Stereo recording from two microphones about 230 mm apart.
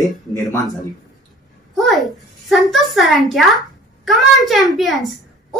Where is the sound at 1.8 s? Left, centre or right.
Centre.